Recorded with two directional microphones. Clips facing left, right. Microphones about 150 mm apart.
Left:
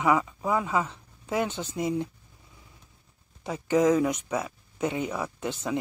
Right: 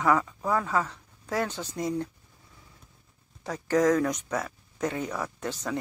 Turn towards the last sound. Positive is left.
turn(degrees=10)  # may be behind; listen again after turning